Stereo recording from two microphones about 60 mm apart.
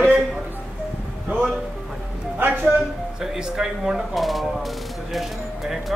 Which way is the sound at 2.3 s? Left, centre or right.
Right.